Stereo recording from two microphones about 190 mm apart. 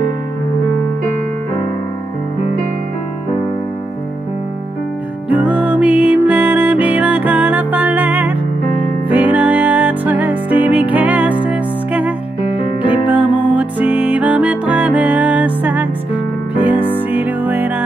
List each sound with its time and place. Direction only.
5.3 s music: 5° right (ahead or behind)
13.1 s music: 5° right (ahead or behind)